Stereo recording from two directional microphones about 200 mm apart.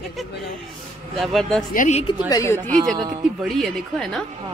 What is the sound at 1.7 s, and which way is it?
Speech, 40° left (ahead or behind).